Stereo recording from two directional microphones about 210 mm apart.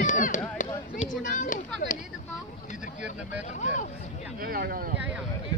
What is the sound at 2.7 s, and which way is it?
Vehicle, 35° left (ahead or behind).